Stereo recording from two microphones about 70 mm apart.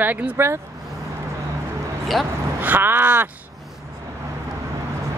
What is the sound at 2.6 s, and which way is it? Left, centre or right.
Speech, right.